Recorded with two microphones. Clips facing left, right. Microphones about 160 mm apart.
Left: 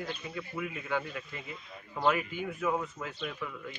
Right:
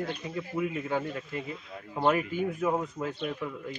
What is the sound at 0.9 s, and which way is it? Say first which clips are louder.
A man's voice: right 3 dB; 35° right (ahead or behind).